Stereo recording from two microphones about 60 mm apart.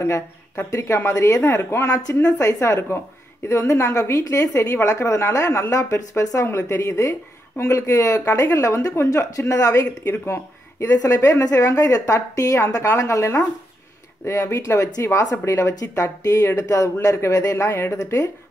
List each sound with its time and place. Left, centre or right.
0.0 s speech: left
0.7 s a woman's voice: left
6.4 s a woman's voice: left
10.2 s speech: left
10.9 s a woman's voice: left
11.4 s a woman's voice: left
15.8 s speech: left
16.4 s a woman's voice: left
17.6 s a woman's voice: left
17.9 s a woman's voice: left